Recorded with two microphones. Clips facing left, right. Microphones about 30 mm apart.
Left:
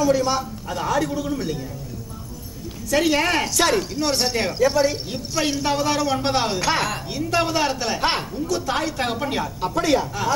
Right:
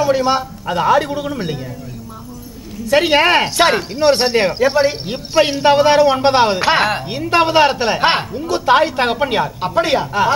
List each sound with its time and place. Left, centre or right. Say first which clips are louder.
0.0 s speech: right 5 dB; right
2.9 s speech: right 7 dB; right